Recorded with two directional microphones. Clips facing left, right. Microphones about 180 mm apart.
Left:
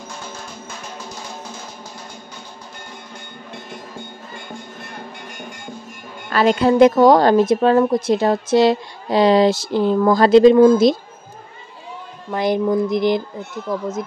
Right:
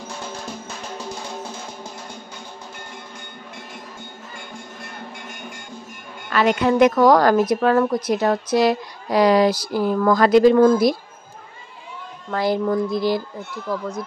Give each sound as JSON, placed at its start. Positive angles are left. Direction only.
{"t": 6.3, "sound": "speech", "side_deg": 30}
{"t": 12.3, "sound": "speech", "side_deg": 20}